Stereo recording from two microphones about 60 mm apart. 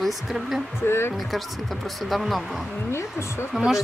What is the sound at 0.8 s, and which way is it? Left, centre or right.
Speech, left.